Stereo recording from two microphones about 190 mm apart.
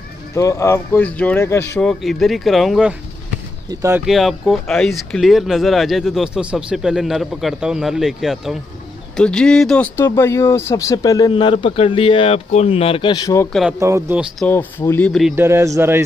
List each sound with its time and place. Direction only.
0.3 s speech: 15° left (ahead or behind)
1.8 s speech: centre (ahead or behind)
4.0 s speech: centre (ahead or behind); by 13.5 s 20° left (ahead or behind)
13.5 s speech: centre (ahead or behind)
13.7 s a man's voice: 15° right (ahead or behind)
14.4 s speech: 10° left (ahead or behind)
15.3 s a man's voice: 15° right (ahead or behind)